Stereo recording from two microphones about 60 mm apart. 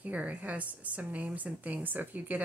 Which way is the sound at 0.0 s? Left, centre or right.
Right.